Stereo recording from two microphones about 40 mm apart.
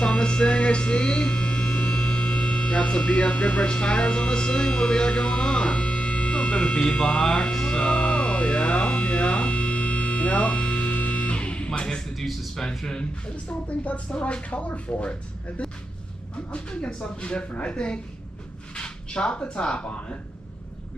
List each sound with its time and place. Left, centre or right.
0.0 s hum: left
6.9 s speech: left
7.5 s music: centre
12.5 s speech: centre
13.7 s speech: left